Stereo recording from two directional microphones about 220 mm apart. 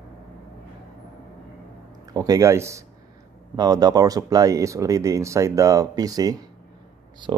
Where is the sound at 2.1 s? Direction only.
15° right (ahead or behind).